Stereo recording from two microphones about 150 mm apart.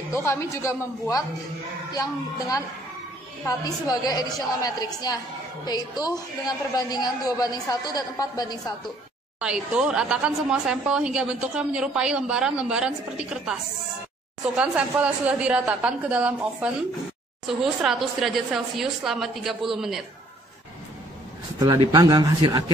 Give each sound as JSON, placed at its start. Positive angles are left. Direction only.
{"t": 0.1, "sound": "a woman's voice", "side_deg": 20}
{"t": 3.9, "sound": "a woman's voice", "side_deg": 25}
{"t": 9.4, "sound": "a woman's voice", "side_deg": -5}
{"t": 21.5, "sound": "speech", "side_deg": -25}